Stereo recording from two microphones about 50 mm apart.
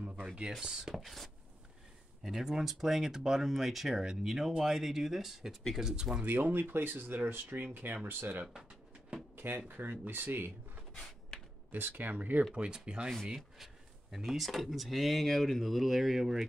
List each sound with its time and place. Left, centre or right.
0.0 s a sound: right
0.5 s speech: centre
6.2 s speech: right
9.3 s drawer open or close: right
9.7 s speech: right
10.9 s a sound: centre
11.7 s speech: right
12.5 s speech: right
14.1 s speech: centre